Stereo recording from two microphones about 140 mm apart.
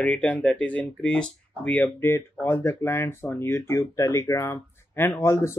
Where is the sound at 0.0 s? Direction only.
10° left (ahead or behind).